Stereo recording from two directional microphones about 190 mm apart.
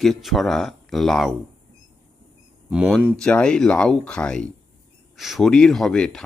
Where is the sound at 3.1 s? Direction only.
5° left (ahead or behind).